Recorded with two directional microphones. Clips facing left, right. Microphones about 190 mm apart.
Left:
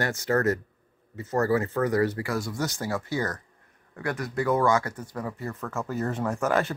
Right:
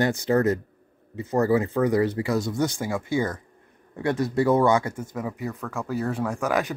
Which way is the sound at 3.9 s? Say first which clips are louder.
Right 6 dB; 25° right (ahead or behind).